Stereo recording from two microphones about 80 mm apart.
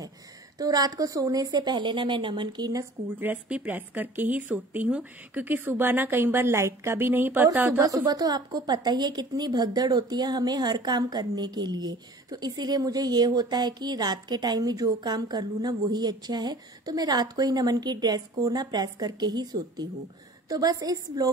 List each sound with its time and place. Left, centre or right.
0.6 s a woman's voice: right
3.2 s speech: centre
7.8 s a woman's voice: right
20.4 s a woman's voice: right